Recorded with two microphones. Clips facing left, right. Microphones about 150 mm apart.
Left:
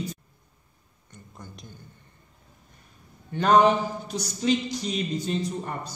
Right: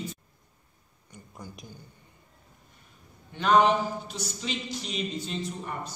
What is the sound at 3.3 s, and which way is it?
A man's voice, 45° left (ahead or behind).